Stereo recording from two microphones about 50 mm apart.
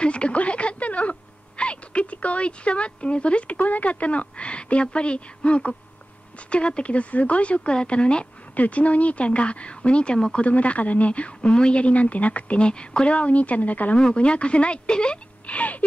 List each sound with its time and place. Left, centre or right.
0.0 s a sound: left
1.6 s speech: left
13.9 s speech: left
15.4 s speech: left